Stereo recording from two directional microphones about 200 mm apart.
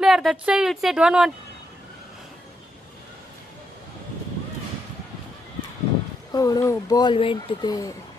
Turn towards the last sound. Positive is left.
turn(degrees=20)  # may be behind; listen again after turning